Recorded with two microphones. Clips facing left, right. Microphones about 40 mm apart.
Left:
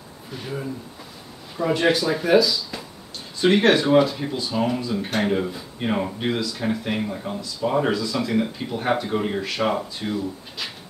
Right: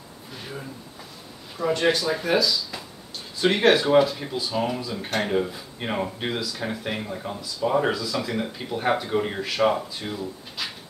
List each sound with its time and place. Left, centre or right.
0.3 s speech: centre